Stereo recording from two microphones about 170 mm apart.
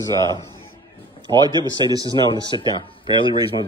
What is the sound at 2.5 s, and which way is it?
Speech, 30° left (ahead or behind).